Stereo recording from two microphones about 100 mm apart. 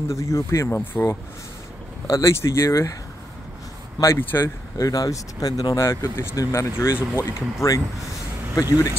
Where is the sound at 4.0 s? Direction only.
25° left (ahead or behind).